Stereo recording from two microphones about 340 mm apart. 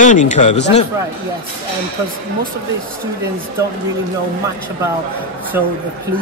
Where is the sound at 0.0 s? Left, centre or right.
Left.